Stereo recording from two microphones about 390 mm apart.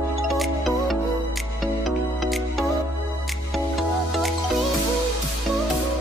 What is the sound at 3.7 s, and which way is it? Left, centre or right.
Music, centre.